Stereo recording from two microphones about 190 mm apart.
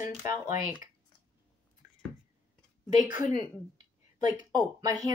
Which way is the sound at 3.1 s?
45° left (ahead or behind).